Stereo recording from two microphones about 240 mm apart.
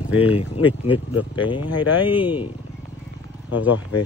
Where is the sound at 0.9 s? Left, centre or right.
Left.